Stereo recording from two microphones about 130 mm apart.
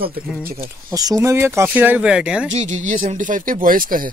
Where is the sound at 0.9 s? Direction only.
30° right (ahead or behind); by 2.5 s 10° right (ahead or behind).